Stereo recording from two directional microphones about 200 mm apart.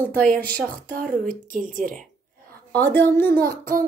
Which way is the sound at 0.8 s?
45° right (ahead or behind).